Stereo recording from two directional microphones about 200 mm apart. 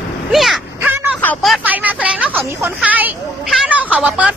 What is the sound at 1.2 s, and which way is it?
Speech, 5° left (ahead or behind).